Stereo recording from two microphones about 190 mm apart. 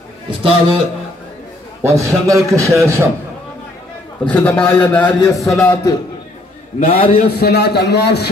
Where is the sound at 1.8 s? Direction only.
15° right (ahead or behind).